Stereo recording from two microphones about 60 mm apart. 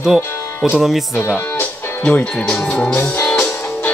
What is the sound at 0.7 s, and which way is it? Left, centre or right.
Speech, centre.